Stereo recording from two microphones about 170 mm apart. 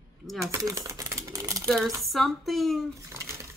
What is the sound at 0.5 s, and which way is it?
Typewriter, 20° right (ahead or behind).